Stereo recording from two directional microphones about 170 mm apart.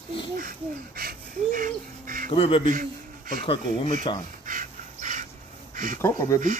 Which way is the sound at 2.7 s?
55° right (ahead or behind).